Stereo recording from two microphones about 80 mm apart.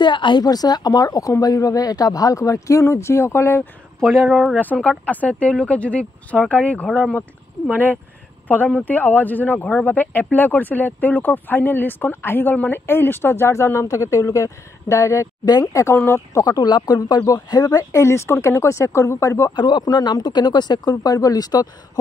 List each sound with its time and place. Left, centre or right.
0.0 s speech: left
4.0 s speech: centre
4.3 s speech: centre
4.7 s speech: centre; by 16.4 s left
16.4 s speech: left
18.0 s speech: left
19.5 s speech: left
19.8 s speech: left